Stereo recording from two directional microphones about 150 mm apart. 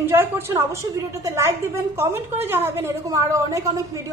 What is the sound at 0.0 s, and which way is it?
A woman's voice, 15° right (ahead or behind).